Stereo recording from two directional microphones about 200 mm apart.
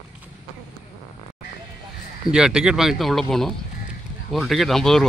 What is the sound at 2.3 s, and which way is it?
A man's voice, 5° right (ahead or behind).